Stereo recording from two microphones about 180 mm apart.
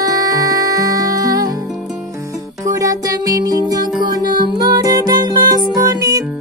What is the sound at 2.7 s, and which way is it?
Music, 20° right (ahead or behind).